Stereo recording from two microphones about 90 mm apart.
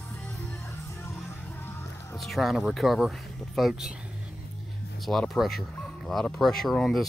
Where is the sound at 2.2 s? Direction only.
Centre (ahead or behind).